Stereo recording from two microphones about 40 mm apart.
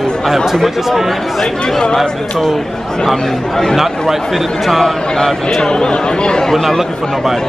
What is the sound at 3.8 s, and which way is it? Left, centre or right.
Speech, centre.